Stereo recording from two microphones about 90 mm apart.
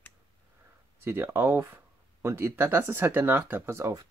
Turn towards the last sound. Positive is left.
turn(degrees=-30)  # may be behind; listen again after turning